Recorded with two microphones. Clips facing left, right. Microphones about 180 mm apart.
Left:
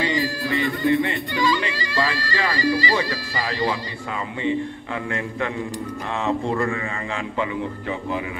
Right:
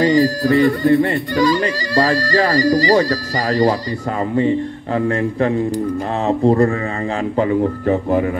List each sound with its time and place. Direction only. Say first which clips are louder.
0.0 s speech: right 10 dB; 40° right (ahead or behind)